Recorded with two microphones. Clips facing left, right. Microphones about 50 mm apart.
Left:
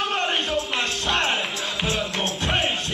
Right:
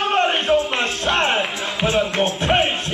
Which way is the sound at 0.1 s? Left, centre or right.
Right.